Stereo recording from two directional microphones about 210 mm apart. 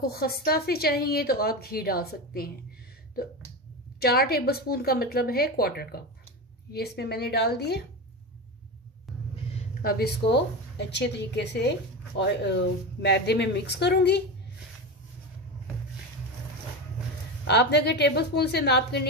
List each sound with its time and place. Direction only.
0.0 s speech: 45° left (ahead or behind)
4.0 s speech: 45° left (ahead or behind)
9.8 s speech: 45° left (ahead or behind)
17.5 s speech: 55° left (ahead or behind)